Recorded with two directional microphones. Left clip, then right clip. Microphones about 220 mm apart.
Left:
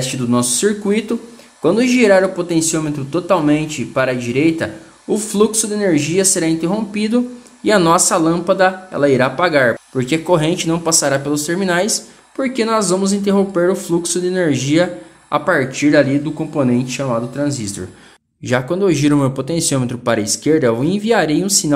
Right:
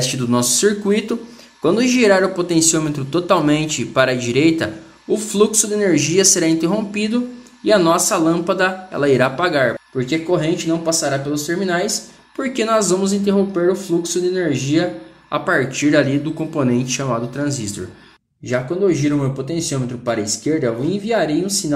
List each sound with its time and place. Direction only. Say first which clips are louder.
0.0 s speech: even; 5° left (ahead or behind)
5.1 s speech: even; 15° left (ahead or behind)
12.4 s speech: left 1 dB; 10° left (ahead or behind)
15.3 s speech: left 2 dB; 15° left (ahead or behind)
18.5 s speech: left 2 dB; 30° left (ahead or behind)